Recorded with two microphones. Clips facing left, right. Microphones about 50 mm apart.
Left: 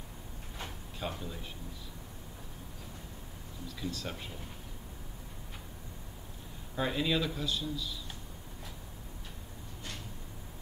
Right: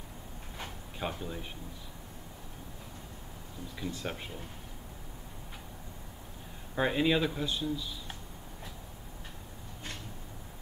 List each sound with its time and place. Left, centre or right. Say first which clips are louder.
0.6 s sliding door: right 2 dB; centre
3.6 s speech: right 1 dB; right
6.7 s speech: right 4 dB; right